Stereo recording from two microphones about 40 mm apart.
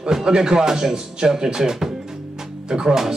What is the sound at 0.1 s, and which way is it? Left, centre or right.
Speech, centre.